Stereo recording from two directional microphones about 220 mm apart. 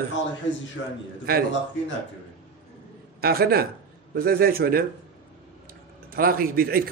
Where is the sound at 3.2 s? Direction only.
45° right (ahead or behind).